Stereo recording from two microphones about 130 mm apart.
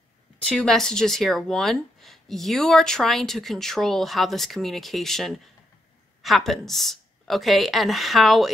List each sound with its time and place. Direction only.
0.6 s speech: 5° left (ahead or behind)